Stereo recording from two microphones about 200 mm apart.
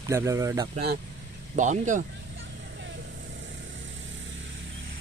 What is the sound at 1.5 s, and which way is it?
Speech, 40° right (ahead or behind).